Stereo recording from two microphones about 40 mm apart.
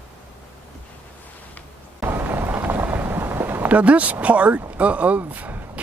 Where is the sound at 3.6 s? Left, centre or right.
Right.